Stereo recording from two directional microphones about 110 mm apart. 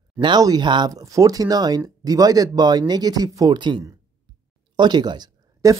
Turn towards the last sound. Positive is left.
turn(degrees=-40)  # may be behind; listen again after turning